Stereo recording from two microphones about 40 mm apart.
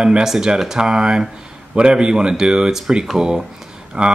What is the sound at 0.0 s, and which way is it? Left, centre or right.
Speech, centre.